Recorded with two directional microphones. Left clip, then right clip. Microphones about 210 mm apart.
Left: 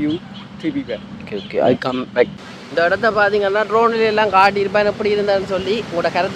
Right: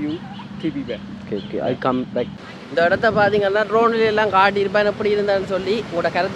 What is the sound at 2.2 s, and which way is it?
Speech, 55° left (ahead or behind).